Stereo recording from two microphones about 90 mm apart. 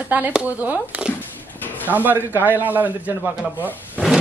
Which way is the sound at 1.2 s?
20° left (ahead or behind).